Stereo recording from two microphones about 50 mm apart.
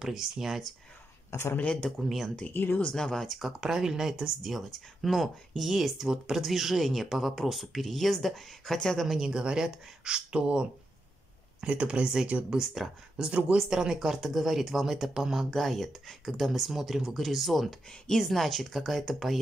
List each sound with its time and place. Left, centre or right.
0.0 s speech: centre
1.9 s speech: centre
2.5 s speech: left
2.9 s speech: centre
3.3 s speech: centre
9.0 s speech: centre; by 12.5 s right
12.5 s speech: centre
15.5 s speech: centre
17.8 s speech: centre